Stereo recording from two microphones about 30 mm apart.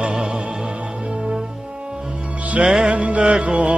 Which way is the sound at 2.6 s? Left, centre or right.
Right.